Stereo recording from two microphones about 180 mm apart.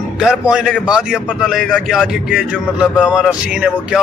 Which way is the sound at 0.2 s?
5° right (ahead or behind).